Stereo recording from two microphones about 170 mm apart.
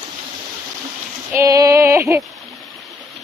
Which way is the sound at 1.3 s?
20° right (ahead or behind).